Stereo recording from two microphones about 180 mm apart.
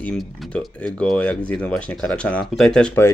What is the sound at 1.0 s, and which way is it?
Speech, 5° left (ahead or behind).